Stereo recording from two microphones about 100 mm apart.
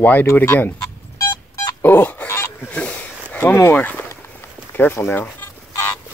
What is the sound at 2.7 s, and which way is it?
Speech, 15° left (ahead or behind).